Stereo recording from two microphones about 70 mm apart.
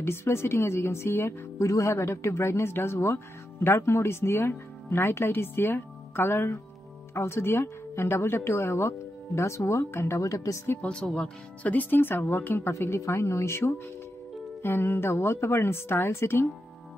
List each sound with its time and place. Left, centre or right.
0.0 s speech: left
1.7 s speech: left
10.8 s speech: centre; by 16.4 s left